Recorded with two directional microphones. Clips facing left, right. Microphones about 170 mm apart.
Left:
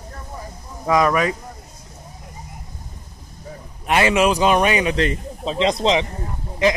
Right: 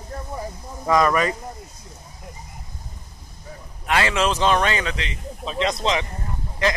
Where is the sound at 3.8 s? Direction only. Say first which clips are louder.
Left 4 dB; 20° left (ahead or behind).